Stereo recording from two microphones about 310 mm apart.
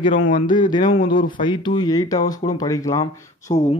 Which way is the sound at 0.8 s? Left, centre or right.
Left.